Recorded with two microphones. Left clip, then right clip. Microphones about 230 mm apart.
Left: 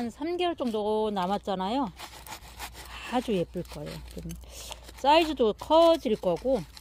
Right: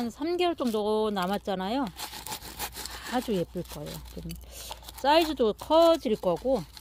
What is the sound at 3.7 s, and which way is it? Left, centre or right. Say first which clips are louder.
Speech: even; centre.